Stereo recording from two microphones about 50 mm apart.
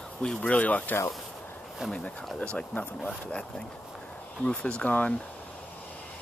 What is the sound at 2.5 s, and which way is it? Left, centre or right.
Speech, centre.